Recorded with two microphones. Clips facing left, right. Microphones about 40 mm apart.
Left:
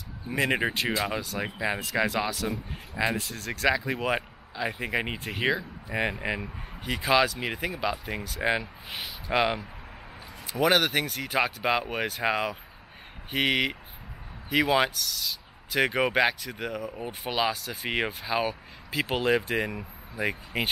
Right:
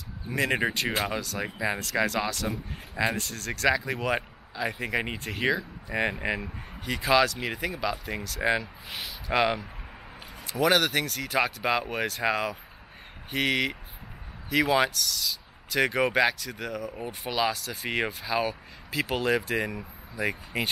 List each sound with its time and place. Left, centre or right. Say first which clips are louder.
0.3 s speech: even; centre